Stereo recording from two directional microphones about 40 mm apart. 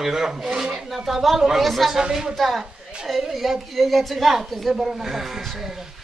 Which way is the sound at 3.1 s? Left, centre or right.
Centre.